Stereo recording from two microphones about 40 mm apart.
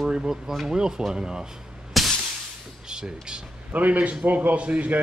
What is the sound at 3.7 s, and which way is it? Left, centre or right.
A man's voice, right.